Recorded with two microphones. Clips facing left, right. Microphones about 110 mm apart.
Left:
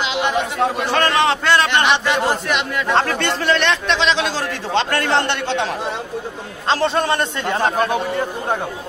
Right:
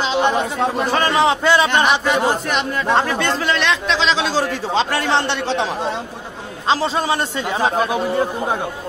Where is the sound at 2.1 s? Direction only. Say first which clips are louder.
Right 1 dB; 40° right (ahead or behind).